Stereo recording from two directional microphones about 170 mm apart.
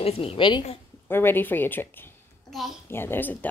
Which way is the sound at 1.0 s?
10° left (ahead or behind).